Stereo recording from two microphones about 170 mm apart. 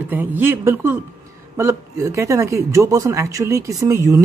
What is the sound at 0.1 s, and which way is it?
Speech, 10° right (ahead or behind).